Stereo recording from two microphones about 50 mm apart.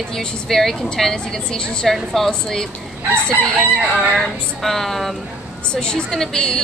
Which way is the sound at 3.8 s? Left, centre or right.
Centre.